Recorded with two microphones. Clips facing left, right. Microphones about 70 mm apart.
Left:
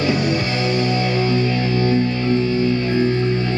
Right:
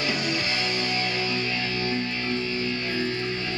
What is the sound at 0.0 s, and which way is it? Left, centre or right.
Music, left.